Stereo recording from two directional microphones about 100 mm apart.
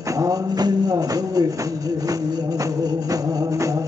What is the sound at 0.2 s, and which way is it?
Speech, 40° right (ahead or behind).